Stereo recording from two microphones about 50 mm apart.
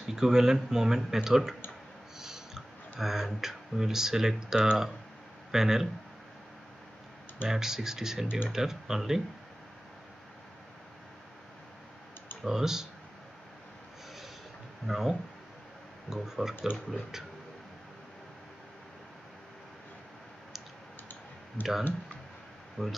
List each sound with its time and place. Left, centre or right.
0.0 s speech: centre
7.4 s speech: centre
12.4 s speech: centre
14.9 s speech: centre
21.6 s speech: left
22.8 s speech: centre